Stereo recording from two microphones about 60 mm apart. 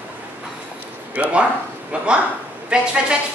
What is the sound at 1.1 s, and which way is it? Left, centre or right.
A man's voice, right.